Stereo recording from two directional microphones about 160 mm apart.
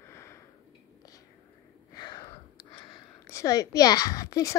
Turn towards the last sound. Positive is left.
turn(degrees=20)  # may be behind; listen again after turning